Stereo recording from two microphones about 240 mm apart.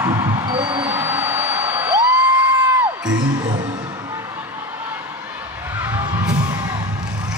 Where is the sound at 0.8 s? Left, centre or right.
Centre.